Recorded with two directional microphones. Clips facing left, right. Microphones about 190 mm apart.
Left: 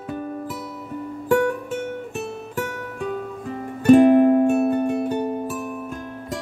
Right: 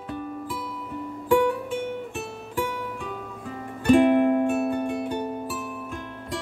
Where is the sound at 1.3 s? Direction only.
45° left (ahead or behind).